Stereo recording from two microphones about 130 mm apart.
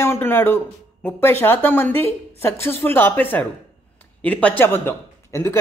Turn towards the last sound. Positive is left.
turn(degrees=20)  # may be behind; listen again after turning